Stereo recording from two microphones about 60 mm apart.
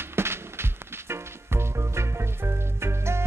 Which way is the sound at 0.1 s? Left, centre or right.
Right.